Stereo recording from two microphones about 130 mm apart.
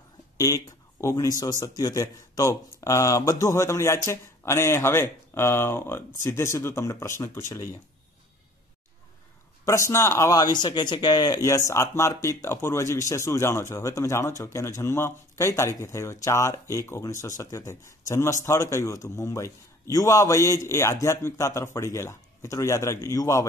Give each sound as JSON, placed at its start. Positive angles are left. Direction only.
{"t": 1.1, "sound": "speech", "side_deg": 25}
{"t": 9.7, "sound": "speech", "side_deg": 20}